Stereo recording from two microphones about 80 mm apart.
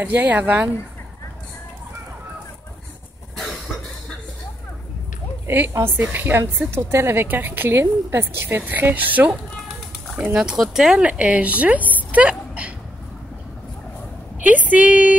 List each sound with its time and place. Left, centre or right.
0.0 s a woman's voice: right
5.9 s a woman's voice: right
10.3 s speech: centre
14.4 s a woman's voice: centre